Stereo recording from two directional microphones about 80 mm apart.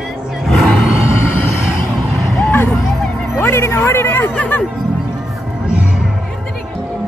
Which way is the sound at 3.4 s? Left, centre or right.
Left.